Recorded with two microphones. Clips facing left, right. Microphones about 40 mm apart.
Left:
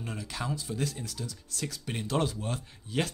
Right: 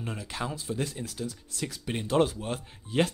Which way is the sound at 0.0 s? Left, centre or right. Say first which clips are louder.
Right 2 dB; centre.